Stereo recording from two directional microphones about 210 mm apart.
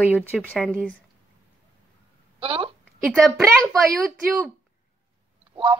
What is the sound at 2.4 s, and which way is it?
Speech, 25° right (ahead or behind).